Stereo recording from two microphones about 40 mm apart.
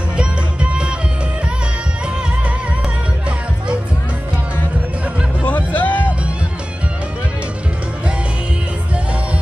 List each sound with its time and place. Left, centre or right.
0.2 s music: right
5.4 s music: left